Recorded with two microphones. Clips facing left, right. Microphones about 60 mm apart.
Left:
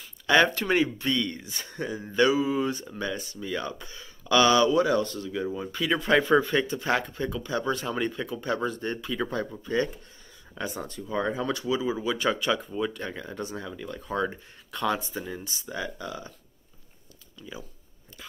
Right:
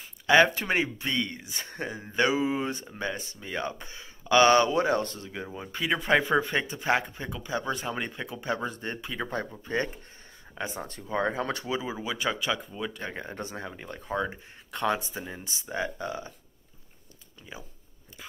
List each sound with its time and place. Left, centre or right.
0.3 s a man's voice: centre
1.6 s a man's voice: right
4.5 s a man's voice: right
10.6 s a man's voice: right
11.8 s a man's voice: centre
12.2 s speech: centre
13.1 s speech: right
14.1 s speech: centre
14.7 s a man's voice: right
17.4 s speech: right